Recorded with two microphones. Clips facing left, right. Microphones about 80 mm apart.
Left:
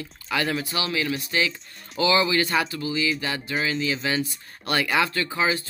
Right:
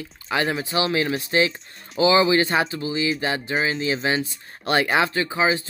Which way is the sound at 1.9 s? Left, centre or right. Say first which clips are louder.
Right 4 dB; right.